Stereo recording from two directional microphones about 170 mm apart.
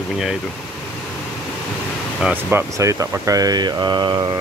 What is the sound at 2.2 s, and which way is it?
Speech, 10° right (ahead or behind).